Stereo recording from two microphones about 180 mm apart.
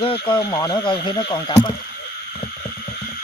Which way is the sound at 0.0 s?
30° left (ahead or behind).